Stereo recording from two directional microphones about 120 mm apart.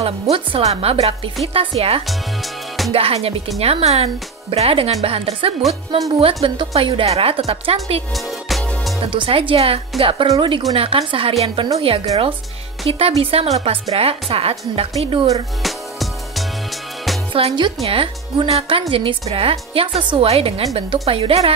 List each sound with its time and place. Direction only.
0.0 s a woman's voice: 50° right (ahead or behind)
8.1 s music: centre (ahead or behind)
9.0 s a woman's voice: 50° right (ahead or behind)
15.6 s music: centre (ahead or behind)
17.3 s a woman's voice: 50° right (ahead or behind)